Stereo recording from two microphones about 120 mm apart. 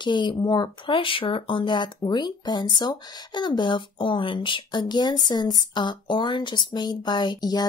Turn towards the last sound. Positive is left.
turn(degrees=35)  # may be behind; listen again after turning